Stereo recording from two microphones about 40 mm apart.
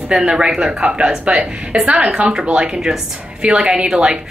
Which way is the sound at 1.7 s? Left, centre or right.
Right.